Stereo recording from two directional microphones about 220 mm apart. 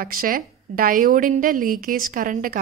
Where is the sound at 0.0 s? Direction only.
40° right (ahead or behind).